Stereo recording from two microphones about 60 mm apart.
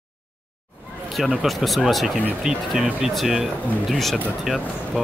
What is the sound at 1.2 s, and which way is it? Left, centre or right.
Speech, centre.